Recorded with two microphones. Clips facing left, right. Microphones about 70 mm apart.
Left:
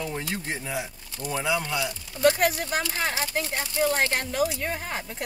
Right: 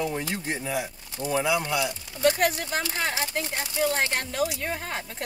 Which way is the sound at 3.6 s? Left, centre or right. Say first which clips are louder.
Left 1 dB; left.